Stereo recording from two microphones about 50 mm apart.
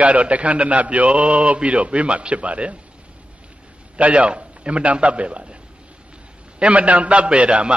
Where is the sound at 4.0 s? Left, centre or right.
Right.